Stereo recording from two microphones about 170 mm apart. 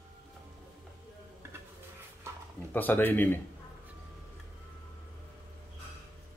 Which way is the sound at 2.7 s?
10° left (ahead or behind).